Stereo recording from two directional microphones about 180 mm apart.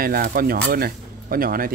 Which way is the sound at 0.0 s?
55° right (ahead or behind).